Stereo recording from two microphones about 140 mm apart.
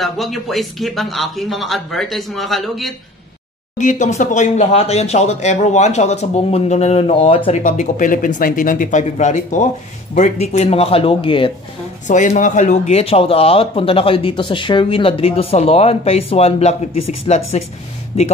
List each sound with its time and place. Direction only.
0.0 s speech: centre (ahead or behind)
3.7 s speech: 60° left (ahead or behind); by 7.5 s 40° left (ahead or behind)
7.5 s speech: 55° left (ahead or behind); by 11.5 s 40° left (ahead or behind)
12.1 s speech: 65° left (ahead or behind); by 18.3 s 50° left (ahead or behind)